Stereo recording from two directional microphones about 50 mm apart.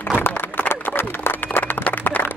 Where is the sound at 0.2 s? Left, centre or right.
Left.